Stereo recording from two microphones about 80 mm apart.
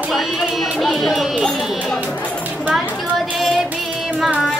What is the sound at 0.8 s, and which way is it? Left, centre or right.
Music, centre.